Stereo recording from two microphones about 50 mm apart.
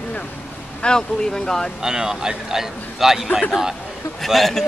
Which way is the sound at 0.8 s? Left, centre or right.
Centre.